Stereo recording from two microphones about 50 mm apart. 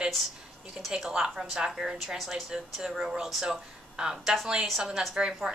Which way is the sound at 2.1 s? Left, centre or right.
Centre.